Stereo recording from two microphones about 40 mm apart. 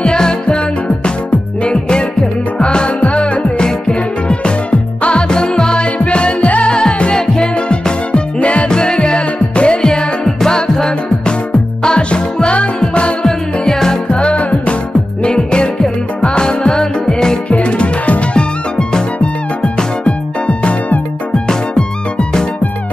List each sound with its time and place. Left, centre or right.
0.0 s music: left
1.6 s music: left
13.7 s music: centre
14.0 s music: left
17.5 s music: left